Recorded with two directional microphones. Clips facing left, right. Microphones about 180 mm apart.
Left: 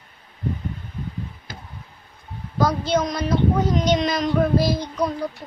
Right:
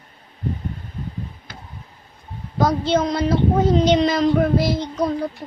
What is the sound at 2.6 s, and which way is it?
A woman's voice, 25° right (ahead or behind).